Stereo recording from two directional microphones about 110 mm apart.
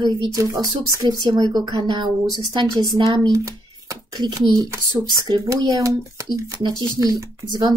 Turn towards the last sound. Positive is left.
turn(degrees=-40)  # may be behind; listen again after turning